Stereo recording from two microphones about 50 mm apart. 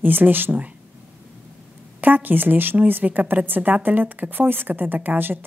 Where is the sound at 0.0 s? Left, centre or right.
Right.